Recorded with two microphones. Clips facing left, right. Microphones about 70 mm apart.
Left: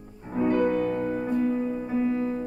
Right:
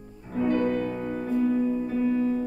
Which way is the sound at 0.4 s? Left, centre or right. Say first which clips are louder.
Left 1 dB; centre.